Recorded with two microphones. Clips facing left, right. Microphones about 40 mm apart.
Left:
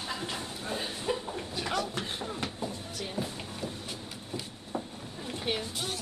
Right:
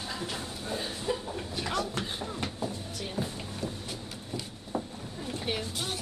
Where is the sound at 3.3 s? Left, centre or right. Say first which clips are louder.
Right 1 dB; left.